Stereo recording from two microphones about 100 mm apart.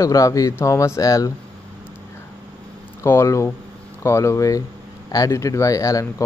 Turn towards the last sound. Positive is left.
turn(degrees=35)  # may be behind; listen again after turning